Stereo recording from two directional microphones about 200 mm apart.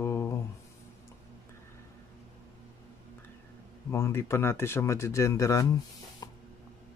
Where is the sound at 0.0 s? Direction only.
10° left (ahead or behind).